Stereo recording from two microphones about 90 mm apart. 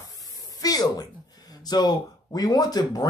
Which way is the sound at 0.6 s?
45° left (ahead or behind).